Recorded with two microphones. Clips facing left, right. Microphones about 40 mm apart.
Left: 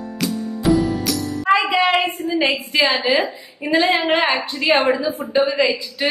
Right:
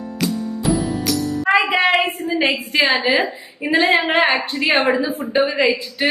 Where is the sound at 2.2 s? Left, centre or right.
Centre.